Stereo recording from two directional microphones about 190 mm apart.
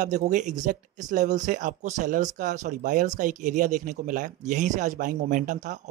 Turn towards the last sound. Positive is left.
turn(degrees=-40)  # may be behind; listen again after turning